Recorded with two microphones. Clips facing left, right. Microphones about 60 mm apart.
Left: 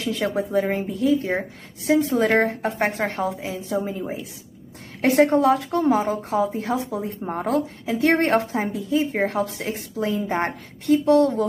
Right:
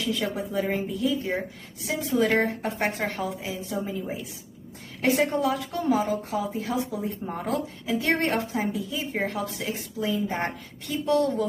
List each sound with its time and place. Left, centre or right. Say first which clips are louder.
0.0 s a woman's voice: left 4 dB; left
5.2 s a woman's voice: left 7 dB; left